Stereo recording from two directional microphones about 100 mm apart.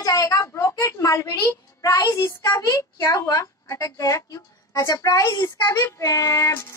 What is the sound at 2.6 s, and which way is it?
Speech, 35° left (ahead or behind).